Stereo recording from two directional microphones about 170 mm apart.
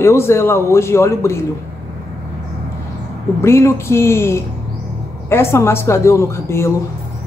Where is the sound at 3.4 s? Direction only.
15° left (ahead or behind).